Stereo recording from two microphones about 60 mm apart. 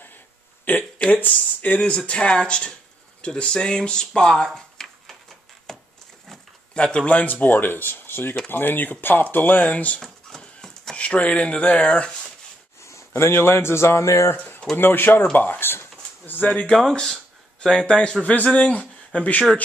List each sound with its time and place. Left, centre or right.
0.7 s speech: left; by 4.5 s centre
4.6 s a sound: centre
6.7 s speech: centre
9.9 s a sound: centre
11.0 s speech: centre
12.8 s speech: left
14.8 s speech: left
15.3 s a sound: left
16.4 s speech: centre